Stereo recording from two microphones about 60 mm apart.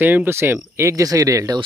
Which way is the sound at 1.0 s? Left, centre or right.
Right.